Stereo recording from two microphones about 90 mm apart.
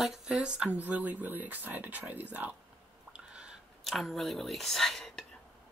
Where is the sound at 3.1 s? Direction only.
10° right (ahead or behind).